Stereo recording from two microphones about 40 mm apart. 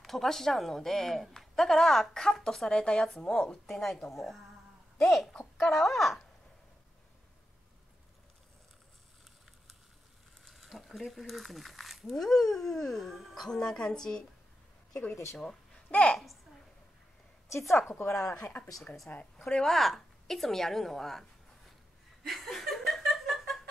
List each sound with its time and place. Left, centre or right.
0.0 s a woman's voice: centre
5.6 s speech: centre
10.5 s a sound: centre
11.0 s a woman's voice: centre
13.5 s a woman's voice: centre
15.9 s a woman's voice: left
18.0 s speech: left
19.0 s a woman's voice: left
19.4 s speech: centre
19.7 s a woman's voice: centre
22.2 s laughter: centre
23.2 s a sound: centre